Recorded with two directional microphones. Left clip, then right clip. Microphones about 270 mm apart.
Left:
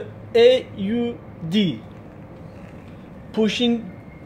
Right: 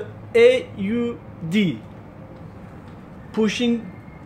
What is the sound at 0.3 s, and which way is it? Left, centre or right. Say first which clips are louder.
Speech: even; centre.